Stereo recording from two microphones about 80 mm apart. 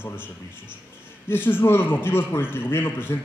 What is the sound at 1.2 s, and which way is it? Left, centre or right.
A man's voice, left.